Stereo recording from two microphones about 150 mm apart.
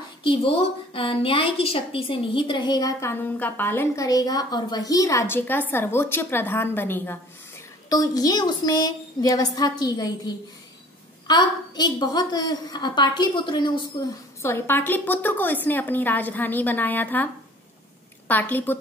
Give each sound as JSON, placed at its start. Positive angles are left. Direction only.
{"t": 0.2, "sound": "a woman's voice", "side_deg": 35}
{"t": 14.4, "sound": "a woman's voice", "side_deg": 15}
{"t": 18.3, "sound": "a woman's voice", "side_deg": 10}